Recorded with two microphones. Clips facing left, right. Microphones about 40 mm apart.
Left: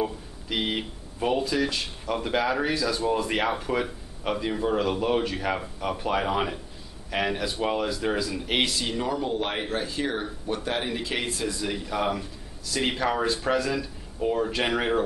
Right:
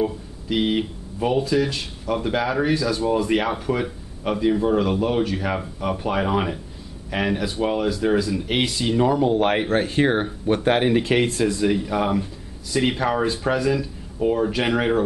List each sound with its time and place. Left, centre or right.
0.0 s speech: centre
8.9 s speech: centre
9.4 s speech: right
11.7 s speech: centre